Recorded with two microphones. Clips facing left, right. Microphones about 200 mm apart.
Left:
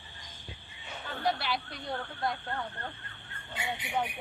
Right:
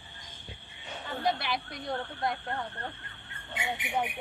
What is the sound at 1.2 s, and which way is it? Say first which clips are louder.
Speech: even; 20° right (ahead or behind).